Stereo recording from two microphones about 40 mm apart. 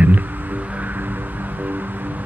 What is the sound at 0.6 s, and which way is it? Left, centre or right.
Music, right.